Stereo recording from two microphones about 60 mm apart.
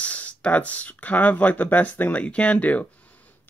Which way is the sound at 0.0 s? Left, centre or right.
Left.